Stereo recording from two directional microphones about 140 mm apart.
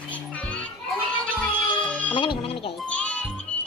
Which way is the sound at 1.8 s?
10° left (ahead or behind).